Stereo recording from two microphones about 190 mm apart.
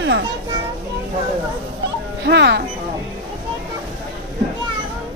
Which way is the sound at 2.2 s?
60° right (ahead or behind).